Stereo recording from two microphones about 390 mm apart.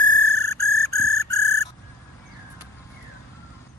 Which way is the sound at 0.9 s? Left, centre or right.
Centre.